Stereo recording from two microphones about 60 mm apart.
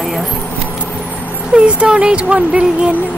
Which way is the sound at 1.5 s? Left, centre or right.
Centre.